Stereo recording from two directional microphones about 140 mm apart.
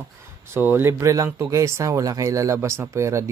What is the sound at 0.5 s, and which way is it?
Speech, 15° right (ahead or behind).